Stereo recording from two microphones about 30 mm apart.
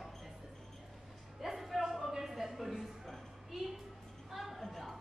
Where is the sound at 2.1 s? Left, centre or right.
Centre.